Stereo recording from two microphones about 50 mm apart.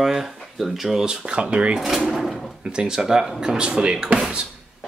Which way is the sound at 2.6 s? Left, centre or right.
Centre.